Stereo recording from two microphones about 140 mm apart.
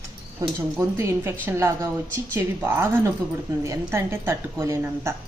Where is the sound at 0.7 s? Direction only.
20° right (ahead or behind).